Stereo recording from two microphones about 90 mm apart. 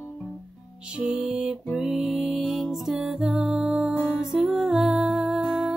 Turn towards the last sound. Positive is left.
turn(degrees=-5)  # may be behind; listen again after turning